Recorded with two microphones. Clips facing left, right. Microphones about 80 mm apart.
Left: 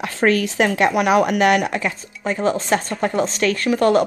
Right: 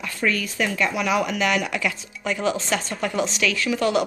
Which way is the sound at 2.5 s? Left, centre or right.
Left.